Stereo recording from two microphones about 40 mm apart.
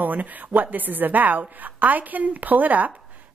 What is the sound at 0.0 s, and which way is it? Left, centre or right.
Speech, right.